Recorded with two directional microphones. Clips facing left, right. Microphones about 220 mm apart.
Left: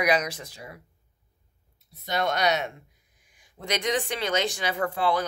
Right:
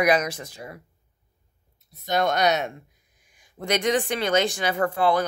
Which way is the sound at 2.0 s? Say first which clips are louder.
Right 3 dB; 45° right (ahead or behind).